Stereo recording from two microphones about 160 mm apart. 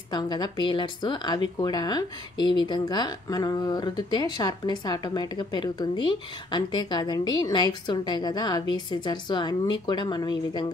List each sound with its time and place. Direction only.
0.1 s speech: 25° left (ahead or behind)